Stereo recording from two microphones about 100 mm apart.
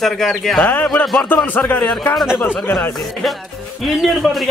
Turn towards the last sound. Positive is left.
turn(degrees=0)  # may be behind; listen again after turning